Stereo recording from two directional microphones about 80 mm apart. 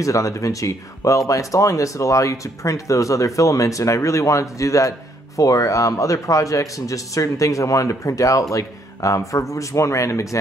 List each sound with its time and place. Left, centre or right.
0.0 s speech: left